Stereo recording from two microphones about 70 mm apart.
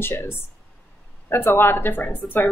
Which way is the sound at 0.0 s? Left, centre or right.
Left.